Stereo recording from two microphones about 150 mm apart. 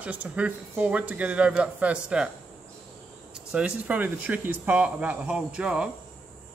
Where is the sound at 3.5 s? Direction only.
5° right (ahead or behind).